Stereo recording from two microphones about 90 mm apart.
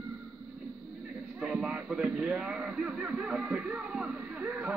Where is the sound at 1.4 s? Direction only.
10° right (ahead or behind).